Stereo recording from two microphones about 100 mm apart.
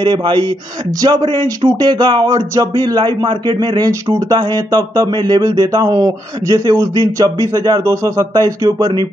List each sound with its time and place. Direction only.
0.0 s speech: 50° right (ahead or behind)